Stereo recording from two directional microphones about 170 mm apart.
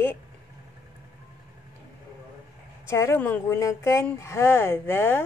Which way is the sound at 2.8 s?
15° left (ahead or behind).